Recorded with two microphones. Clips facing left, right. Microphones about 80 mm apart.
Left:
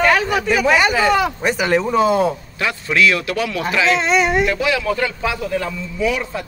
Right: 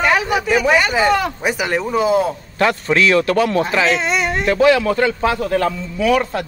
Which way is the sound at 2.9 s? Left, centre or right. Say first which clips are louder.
Even; right.